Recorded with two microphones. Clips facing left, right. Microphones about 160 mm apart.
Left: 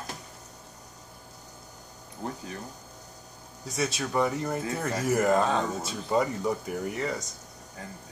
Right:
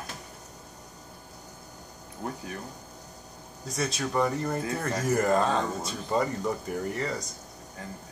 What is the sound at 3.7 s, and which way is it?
Speech, centre (ahead or behind).